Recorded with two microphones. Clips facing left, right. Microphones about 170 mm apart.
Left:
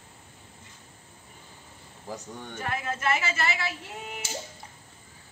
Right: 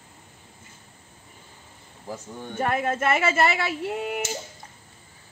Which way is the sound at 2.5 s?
55° right (ahead or behind).